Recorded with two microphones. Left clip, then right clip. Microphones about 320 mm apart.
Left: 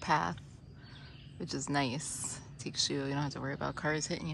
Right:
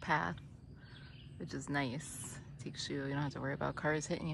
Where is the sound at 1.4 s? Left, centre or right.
Centre.